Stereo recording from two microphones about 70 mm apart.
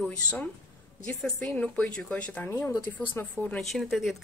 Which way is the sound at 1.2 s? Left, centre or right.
Centre.